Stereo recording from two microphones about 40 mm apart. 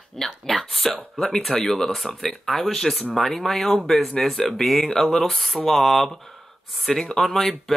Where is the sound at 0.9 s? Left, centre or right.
Centre.